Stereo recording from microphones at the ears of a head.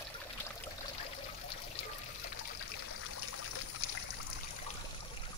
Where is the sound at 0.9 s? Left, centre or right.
Left.